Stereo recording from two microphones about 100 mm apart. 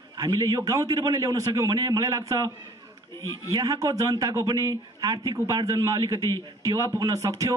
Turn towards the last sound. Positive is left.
turn(degrees=-35)  # may be behind; listen again after turning